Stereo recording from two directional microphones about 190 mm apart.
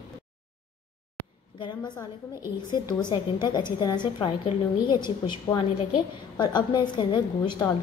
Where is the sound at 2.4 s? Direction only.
20° left (ahead or behind).